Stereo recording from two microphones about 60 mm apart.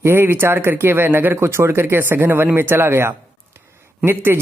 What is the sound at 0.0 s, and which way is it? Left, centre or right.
Speech, right.